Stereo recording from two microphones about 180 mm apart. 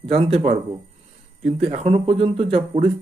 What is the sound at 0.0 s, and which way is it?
Speech, 35° right (ahead or behind).